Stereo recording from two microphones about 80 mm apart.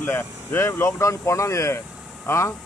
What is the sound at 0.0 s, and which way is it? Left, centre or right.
Speech, left.